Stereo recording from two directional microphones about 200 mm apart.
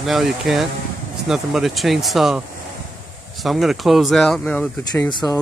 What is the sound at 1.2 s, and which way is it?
Speech, centre (ahead or behind).